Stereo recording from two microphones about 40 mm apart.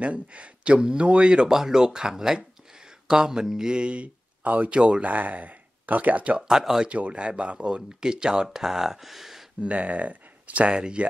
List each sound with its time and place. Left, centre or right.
0.0 s speech: right
1.5 s speech: centre
5.0 s speech: right
6.3 s speech: centre
6.9 s speech: right; by 9.5 s centre
9.6 s speech: right
10.7 s speech: right